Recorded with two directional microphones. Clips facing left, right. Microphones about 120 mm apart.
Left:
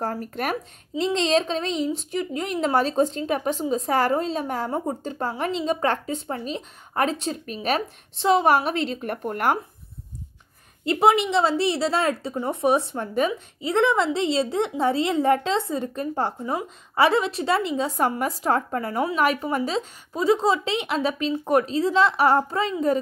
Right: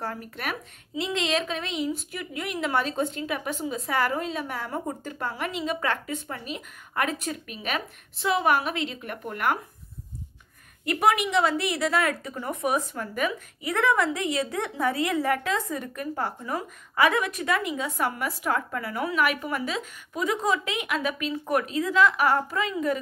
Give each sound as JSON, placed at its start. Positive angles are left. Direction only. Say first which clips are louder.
{"t": 0.0, "sound": "speech", "louder": "left 6 dB", "side_deg": 40}
{"t": 10.9, "sound": "a woman's voice", "louder": "left 4 dB", "side_deg": 25}